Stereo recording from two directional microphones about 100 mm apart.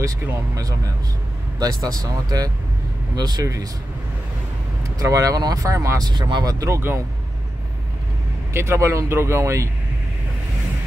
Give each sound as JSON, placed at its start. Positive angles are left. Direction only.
{"t": 0.0, "sound": "speech", "side_deg": -35}
{"t": 2.0, "sound": "speech", "side_deg": -40}
{"t": 4.9, "sound": "speech", "side_deg": -35}
{"t": 6.0, "sound": "speech", "side_deg": -50}
{"t": 6.6, "sound": "speech", "side_deg": -25}
{"t": 8.5, "sound": "speech", "side_deg": -30}